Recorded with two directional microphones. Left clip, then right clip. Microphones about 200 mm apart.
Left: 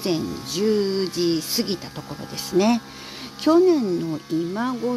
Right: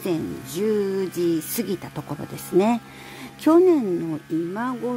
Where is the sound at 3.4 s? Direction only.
20° right (ahead or behind).